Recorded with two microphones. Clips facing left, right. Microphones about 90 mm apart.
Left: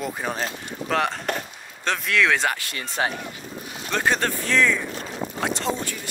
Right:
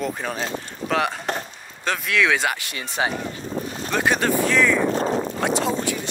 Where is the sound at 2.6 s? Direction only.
15° right (ahead or behind).